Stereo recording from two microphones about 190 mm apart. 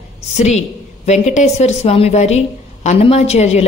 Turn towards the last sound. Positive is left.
turn(degrees=35)  # may be behind; listen again after turning